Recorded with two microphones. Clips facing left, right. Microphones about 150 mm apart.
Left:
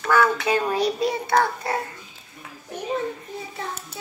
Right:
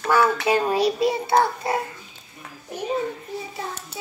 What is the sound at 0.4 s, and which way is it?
Speech, 25° right (ahead or behind).